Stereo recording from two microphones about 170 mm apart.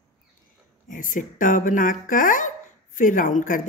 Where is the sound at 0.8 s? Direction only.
50° left (ahead or behind).